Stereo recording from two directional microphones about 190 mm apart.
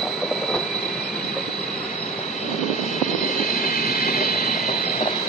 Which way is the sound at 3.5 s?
45° left (ahead or behind).